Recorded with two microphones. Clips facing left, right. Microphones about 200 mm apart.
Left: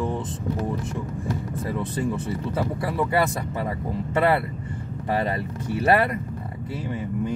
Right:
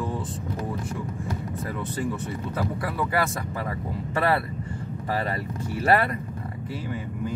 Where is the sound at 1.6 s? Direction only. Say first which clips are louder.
Left 3 dB; 25° left (ahead or behind).